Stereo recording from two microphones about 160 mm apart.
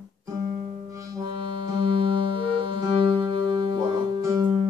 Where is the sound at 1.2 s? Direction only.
30° right (ahead or behind).